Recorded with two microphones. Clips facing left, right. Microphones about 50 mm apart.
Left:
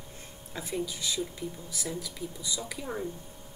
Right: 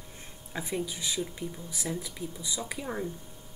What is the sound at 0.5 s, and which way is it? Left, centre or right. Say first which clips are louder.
Speech: right 1 dB; centre.